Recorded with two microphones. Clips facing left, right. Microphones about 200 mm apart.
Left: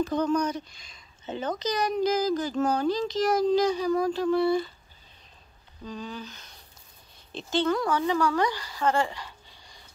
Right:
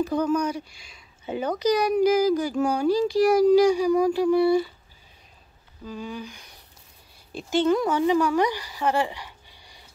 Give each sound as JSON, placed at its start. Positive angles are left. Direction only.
{"t": 0.0, "sound": "speech", "side_deg": -10}
{"t": 5.9, "sound": "speech", "side_deg": -10}